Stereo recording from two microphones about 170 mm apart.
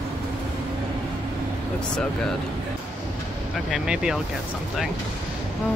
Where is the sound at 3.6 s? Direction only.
5° right (ahead or behind).